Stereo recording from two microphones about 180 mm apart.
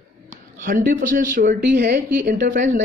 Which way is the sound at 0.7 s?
50° right (ahead or behind).